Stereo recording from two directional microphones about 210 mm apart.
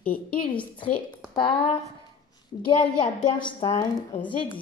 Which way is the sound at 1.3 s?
25° left (ahead or behind).